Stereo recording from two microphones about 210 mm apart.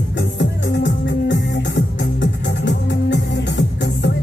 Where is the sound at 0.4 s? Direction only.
60° left (ahead or behind).